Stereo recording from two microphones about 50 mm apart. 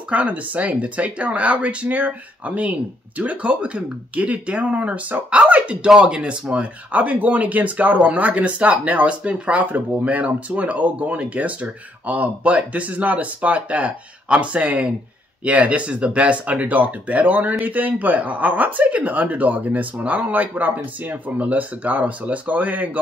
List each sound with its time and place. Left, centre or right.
0.1 s speech: right